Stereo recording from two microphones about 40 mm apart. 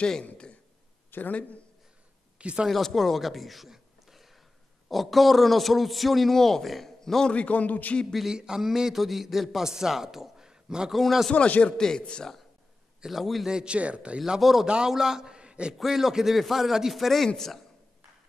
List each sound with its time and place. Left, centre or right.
0.0 s speech: left
1.1 s speech: left
2.3 s a sound: right
2.7 s a man's voice: centre
7.2 s a man's voice: left
8.3 s a man's voice: centre
10.9 s a man's voice: centre
11.3 s a man's voice: left
13.0 s a man's voice: centre
13.5 s speech: right
13.7 s speech: right
14.4 s a man's voice: centre; by 15.7 s right
15.8 s a man's voice: centre
16.9 s a man's voice: centre